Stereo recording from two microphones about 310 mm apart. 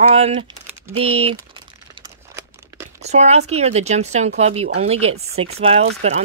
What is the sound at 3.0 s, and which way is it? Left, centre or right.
Speech, right.